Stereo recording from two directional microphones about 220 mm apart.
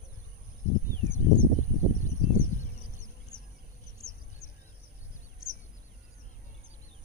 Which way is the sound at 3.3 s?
10° right (ahead or behind).